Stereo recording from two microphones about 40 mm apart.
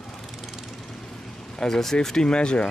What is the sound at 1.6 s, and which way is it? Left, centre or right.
Speech, centre.